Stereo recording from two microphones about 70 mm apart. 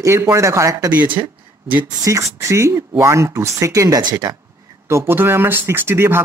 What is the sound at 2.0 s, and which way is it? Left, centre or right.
Speech, right.